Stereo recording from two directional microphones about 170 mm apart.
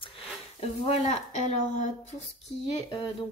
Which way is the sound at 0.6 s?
40° left (ahead or behind).